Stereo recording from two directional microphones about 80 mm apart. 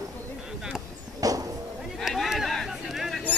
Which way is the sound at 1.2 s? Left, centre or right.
Right.